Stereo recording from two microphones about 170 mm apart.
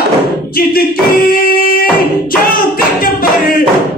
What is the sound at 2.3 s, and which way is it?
Music, 60° left (ahead or behind).